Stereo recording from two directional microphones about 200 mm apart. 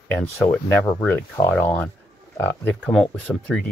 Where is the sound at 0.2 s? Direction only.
10° left (ahead or behind).